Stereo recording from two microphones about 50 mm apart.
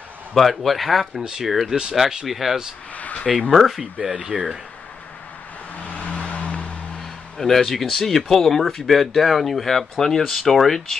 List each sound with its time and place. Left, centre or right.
0.3 s speech: centre
3.0 s a sound: left
3.3 s speech: centre
3.5 s speech: centre
3.8 s speech: centre
5.8 s vehicle: left
7.3 s speech: centre